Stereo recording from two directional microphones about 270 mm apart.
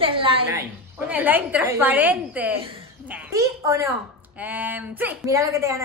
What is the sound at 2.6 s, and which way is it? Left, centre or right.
Speech, centre.